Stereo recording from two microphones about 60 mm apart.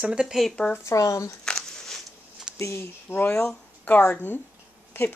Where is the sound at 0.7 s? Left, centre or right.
Left.